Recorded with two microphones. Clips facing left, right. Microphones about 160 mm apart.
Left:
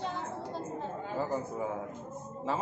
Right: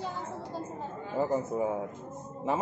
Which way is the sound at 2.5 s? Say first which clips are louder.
Right 3 dB; 20° right (ahead or behind).